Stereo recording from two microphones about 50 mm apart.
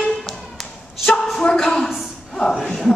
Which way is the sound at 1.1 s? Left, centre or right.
Centre.